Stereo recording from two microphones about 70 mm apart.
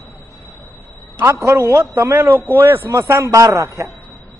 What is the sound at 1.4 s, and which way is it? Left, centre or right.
A man's voice, right.